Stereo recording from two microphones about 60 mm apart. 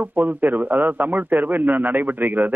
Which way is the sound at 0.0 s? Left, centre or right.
Right.